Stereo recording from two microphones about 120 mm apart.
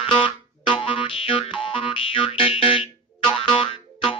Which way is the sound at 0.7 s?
45° left (ahead or behind).